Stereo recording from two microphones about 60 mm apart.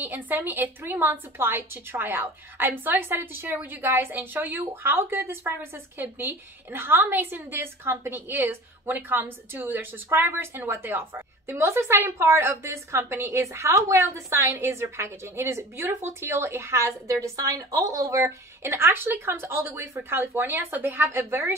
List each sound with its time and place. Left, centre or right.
0.0 s a woman's voice: right
14.5 s a woman's voice: right